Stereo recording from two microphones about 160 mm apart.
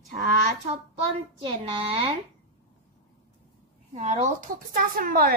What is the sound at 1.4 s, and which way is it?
Speech, 35° right (ahead or behind).